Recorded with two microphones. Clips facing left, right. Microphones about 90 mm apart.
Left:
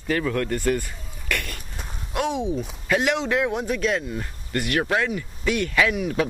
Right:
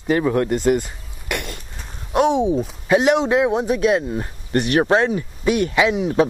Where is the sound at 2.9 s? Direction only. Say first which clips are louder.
Right 6 dB; 20° right (ahead or behind).